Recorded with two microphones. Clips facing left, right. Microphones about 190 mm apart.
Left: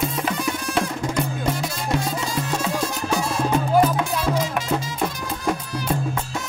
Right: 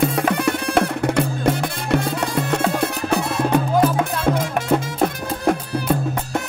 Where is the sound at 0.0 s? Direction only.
65° right (ahead or behind).